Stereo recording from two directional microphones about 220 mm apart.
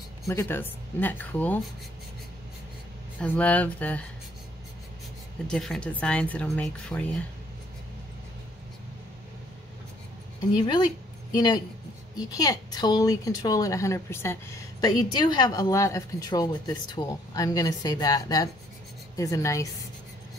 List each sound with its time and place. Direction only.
0.3 s a woman's voice: 10° left (ahead or behind)
3.2 s speech: 5° left (ahead or behind)
5.5 s speech: 5° left (ahead or behind)
10.6 s a woman's voice: 20° left (ahead or behind)